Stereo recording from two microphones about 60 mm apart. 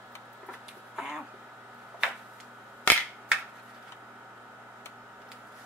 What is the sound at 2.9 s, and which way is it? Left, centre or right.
Finger snapping, left.